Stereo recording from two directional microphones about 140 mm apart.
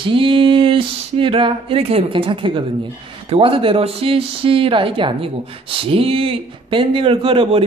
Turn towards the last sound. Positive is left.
turn(degrees=-40)  # may be behind; listen again after turning